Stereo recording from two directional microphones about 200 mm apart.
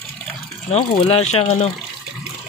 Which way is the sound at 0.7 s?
30° left (ahead or behind).